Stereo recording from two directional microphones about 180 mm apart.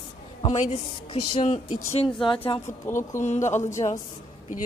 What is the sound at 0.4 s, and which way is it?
A woman's voice, 35° left (ahead or behind).